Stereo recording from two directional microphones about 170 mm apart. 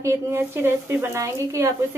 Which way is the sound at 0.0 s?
15° right (ahead or behind).